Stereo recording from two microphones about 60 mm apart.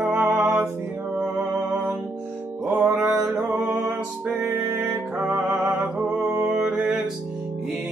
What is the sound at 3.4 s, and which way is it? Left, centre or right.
Music, right.